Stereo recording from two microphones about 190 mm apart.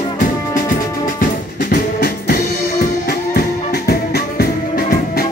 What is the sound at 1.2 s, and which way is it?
Music, 50° left (ahead or behind).